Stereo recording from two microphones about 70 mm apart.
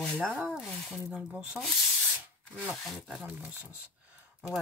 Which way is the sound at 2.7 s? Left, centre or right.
Centre.